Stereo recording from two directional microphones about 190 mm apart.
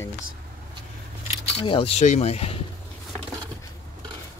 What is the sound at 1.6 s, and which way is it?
Speech, 30° left (ahead or behind).